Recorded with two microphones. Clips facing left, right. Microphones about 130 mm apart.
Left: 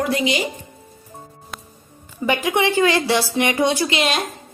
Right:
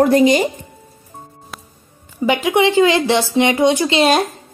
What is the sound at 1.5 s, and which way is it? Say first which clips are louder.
Music: even; 5° right (ahead or behind).